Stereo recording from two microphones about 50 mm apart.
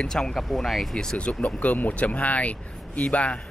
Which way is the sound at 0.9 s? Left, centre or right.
Centre.